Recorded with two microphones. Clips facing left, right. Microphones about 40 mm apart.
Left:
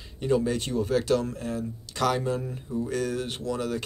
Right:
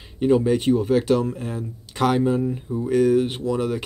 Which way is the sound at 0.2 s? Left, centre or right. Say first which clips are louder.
Right 7 dB; right.